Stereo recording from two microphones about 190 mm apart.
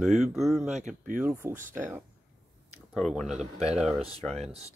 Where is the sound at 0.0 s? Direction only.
Centre (ahead or behind).